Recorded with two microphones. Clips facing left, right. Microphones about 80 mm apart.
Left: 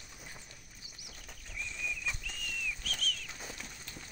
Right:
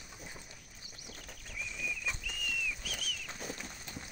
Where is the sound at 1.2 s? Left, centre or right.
Centre.